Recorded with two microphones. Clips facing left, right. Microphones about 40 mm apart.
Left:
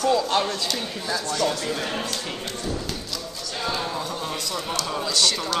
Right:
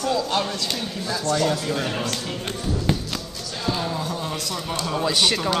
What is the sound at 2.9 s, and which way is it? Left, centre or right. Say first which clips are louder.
Music: right 8 dB; right.